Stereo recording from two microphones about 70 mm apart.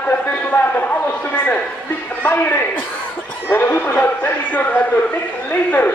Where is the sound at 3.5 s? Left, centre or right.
Left.